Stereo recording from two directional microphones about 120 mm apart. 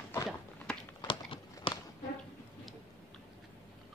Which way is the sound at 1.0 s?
45° left (ahead or behind).